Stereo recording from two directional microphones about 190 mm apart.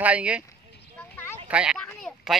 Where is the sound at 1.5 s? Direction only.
5° right (ahead or behind).